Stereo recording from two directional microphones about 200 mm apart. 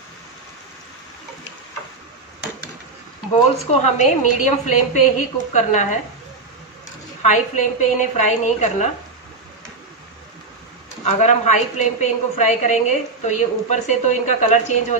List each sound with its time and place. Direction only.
3.8 s a woman's voice: 35° left (ahead or behind)
7.2 s a woman's voice: 40° left (ahead or behind)
11.1 s a woman's voice: 35° left (ahead or behind)